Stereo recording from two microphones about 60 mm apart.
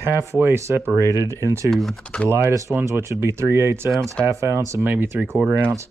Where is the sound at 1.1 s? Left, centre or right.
Right.